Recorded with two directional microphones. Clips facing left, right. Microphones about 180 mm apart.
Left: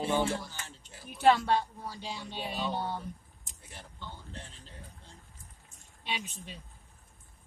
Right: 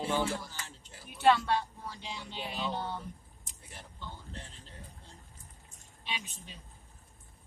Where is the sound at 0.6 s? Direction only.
Centre (ahead or behind).